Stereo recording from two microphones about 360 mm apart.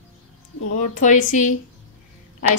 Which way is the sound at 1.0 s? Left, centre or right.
Left.